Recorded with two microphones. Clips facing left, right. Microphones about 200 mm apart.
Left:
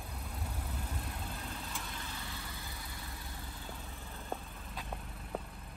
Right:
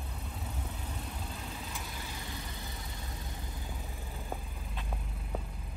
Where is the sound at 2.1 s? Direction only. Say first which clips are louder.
Right 3 dB; 20° right (ahead or behind).